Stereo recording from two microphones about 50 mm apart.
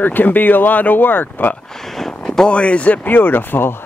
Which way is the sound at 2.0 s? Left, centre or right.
Centre.